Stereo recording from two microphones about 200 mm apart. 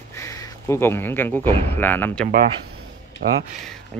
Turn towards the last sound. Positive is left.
turn(degrees=-45)  # may be behind; listen again after turning